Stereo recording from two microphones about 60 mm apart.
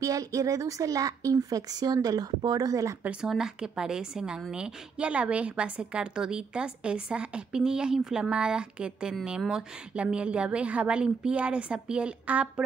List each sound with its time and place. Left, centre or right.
0.0 s speech: right
3.3 s a woman's voice: centre